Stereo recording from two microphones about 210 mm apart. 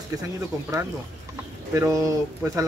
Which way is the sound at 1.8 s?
15° right (ahead or behind).